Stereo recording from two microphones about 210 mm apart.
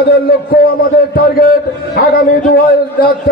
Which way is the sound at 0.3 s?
45° left (ahead or behind).